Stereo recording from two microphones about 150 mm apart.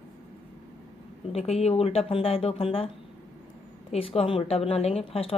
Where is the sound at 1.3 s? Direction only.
45° left (ahead or behind).